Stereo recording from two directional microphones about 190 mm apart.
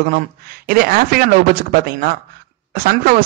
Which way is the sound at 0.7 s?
50° right (ahead or behind).